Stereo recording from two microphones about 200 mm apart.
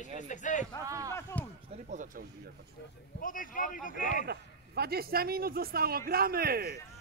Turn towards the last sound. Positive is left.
turn(degrees=-50)  # may be behind; listen again after turning